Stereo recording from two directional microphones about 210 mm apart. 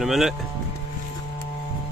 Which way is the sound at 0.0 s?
Centre (ahead or behind).